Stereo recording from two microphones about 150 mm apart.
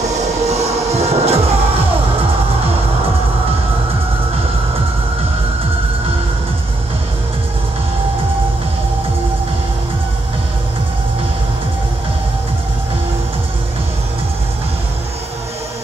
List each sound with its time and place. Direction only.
0.5 s music: 45° right (ahead or behind)